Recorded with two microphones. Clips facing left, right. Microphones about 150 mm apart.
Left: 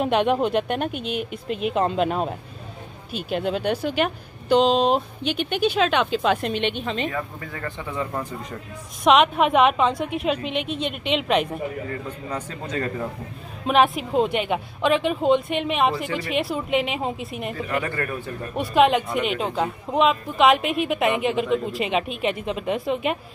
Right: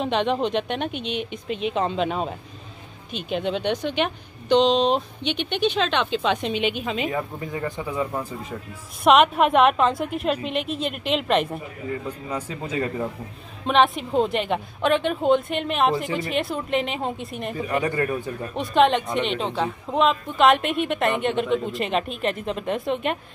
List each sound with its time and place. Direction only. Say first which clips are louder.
0.0 s speech: left 2 dB; 10° left (ahead or behind)
7.1 s speech: right 2 dB; 20° right (ahead or behind)
13.7 s speech: even; 5° left (ahead or behind)
17.8 s speech: right 4 dB; 20° right (ahead or behind)
18.5 s speech: left 1 dB; centre (ahead or behind)